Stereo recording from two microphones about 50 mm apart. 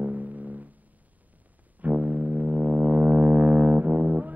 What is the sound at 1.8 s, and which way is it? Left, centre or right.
Music, right.